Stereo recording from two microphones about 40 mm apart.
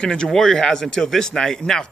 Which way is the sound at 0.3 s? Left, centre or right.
Centre.